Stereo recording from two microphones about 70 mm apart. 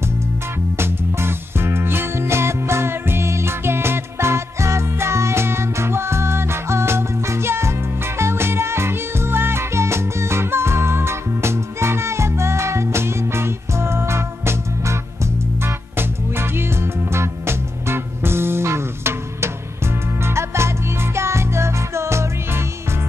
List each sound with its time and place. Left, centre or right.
0.7 s music: right